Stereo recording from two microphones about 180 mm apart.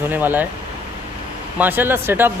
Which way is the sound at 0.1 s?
10° right (ahead or behind).